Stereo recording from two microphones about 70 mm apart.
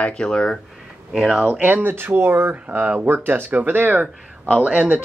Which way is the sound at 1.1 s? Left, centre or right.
Centre.